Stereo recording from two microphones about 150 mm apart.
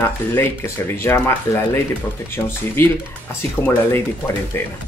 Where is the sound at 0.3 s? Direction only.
15° left (ahead or behind).